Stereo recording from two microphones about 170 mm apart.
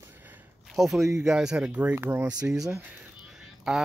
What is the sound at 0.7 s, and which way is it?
Speech, centre (ahead or behind).